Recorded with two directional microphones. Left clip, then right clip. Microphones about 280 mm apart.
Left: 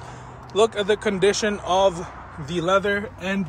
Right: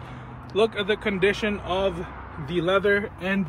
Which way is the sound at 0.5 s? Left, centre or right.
Centre.